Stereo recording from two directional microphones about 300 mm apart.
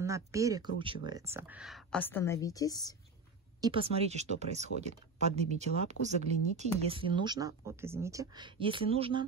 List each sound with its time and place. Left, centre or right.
0.0 s speech: centre
3.6 s speech: centre